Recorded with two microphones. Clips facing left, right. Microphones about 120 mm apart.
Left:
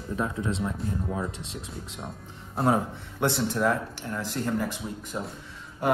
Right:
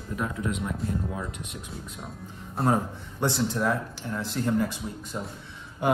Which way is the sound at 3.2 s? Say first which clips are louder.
Left 1 dB; 55° left (ahead or behind).